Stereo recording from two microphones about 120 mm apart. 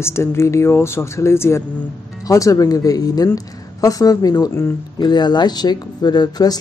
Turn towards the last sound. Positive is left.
turn(degrees=35)  # may be behind; listen again after turning